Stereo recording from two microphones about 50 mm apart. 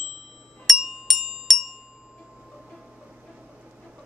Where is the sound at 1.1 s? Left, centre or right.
Centre.